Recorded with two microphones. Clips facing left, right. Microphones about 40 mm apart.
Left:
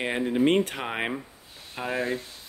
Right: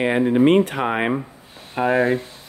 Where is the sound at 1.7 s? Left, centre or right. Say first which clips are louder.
Right 11 dB; right.